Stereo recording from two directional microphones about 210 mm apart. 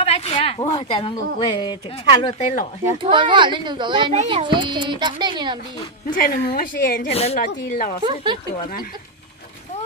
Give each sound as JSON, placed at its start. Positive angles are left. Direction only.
{"t": 0.0, "sound": "speech", "side_deg": 30}
{"t": 3.0, "sound": "a child's voice", "side_deg": -25}
{"t": 6.0, "sound": "a woman's voice", "side_deg": 45}
{"t": 7.1, "sound": "a woman's voice", "side_deg": 30}
{"t": 7.3, "sound": "speech", "side_deg": 40}
{"t": 8.0, "sound": "a child's voice", "side_deg": -25}